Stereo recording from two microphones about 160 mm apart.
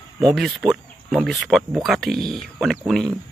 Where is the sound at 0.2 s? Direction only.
Centre (ahead or behind).